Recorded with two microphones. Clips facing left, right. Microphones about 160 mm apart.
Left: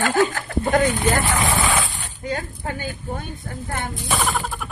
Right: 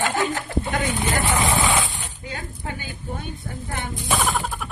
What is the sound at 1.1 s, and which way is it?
Speech, 20° right (ahead or behind).